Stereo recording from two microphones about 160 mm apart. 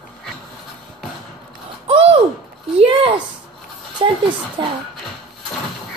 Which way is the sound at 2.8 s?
35° right (ahead or behind).